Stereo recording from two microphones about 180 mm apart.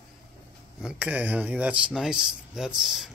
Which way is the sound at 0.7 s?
5° right (ahead or behind).